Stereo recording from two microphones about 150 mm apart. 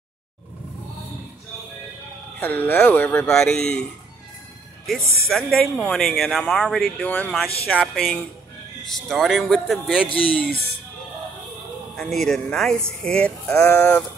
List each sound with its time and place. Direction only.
2.4 s speech: 10° left (ahead or behind)
4.8 s speech: centre (ahead or behind)
10.0 s speech: 35° left (ahead or behind)
12.0 s speech: centre (ahead or behind)